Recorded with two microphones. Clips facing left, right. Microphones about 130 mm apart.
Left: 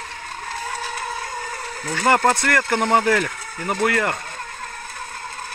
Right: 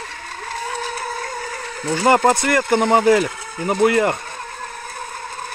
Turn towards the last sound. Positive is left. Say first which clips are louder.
# right 5 dB
turn(degrees=-20)  # may be behind; listen again after turning